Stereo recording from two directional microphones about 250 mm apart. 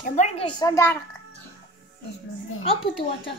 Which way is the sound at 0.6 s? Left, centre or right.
Centre.